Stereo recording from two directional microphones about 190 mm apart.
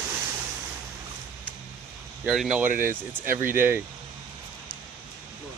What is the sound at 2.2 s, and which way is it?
Speech, 5° right (ahead or behind).